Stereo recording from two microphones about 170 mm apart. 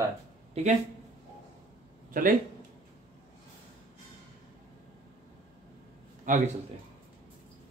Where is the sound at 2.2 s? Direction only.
50° right (ahead or behind).